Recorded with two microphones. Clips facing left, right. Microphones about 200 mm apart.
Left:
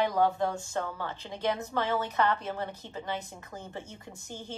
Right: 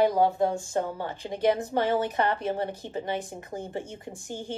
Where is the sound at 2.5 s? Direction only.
30° right (ahead or behind).